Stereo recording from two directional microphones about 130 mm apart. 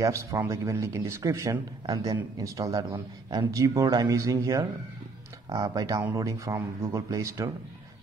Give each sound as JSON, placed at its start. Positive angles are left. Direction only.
{"t": 0.0, "sound": "speech", "side_deg": -25}